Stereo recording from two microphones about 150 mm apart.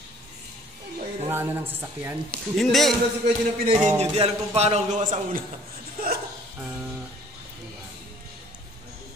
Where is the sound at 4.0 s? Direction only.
45° right (ahead or behind).